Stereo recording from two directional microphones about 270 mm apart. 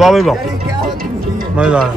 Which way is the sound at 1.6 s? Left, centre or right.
Centre.